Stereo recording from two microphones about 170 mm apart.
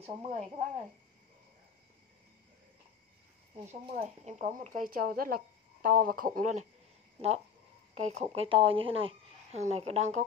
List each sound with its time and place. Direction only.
0.0 s speech: 40° right (ahead or behind)
3.7 s speech: 40° right (ahead or behind)